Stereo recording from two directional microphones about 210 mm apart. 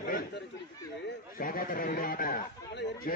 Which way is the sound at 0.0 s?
40° left (ahead or behind).